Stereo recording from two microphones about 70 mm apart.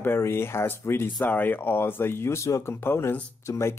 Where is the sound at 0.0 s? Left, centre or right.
Left.